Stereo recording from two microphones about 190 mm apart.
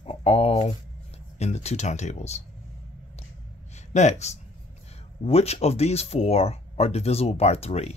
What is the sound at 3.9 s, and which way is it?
Speech, 35° left (ahead or behind).